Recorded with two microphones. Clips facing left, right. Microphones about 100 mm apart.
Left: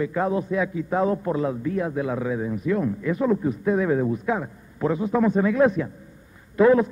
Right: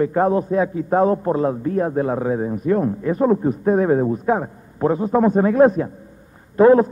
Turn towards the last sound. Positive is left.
turn(degrees=-40)  # may be behind; listen again after turning